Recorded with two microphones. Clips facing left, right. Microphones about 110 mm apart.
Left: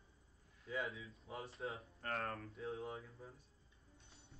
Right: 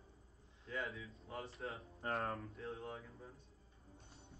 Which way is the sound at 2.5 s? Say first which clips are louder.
Left 2 dB; centre (ahead or behind).